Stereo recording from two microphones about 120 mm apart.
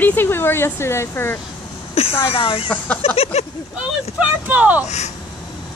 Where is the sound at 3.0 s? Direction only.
55° left (ahead or behind).